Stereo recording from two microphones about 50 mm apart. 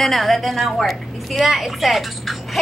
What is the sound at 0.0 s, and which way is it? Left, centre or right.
Speech, centre.